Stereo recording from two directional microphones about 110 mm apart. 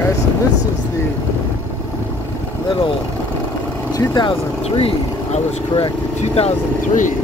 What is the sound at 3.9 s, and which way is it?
Speech, 40° left (ahead or behind).